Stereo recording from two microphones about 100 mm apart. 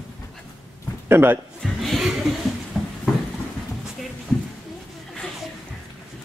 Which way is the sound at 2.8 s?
5° left (ahead or behind).